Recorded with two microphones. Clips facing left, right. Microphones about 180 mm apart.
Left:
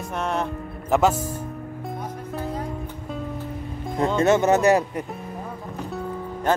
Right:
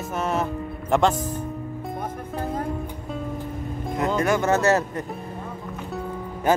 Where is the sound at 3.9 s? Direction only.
25° left (ahead or behind).